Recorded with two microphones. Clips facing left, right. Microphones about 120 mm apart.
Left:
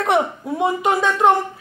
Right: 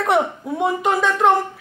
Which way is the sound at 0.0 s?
Centre (ahead or behind).